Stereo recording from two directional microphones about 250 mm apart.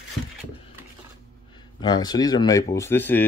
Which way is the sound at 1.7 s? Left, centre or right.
Centre.